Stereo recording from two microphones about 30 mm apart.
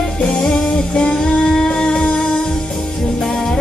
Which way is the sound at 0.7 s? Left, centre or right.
Left.